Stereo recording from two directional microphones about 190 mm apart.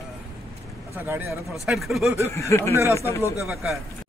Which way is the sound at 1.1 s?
10° right (ahead or behind).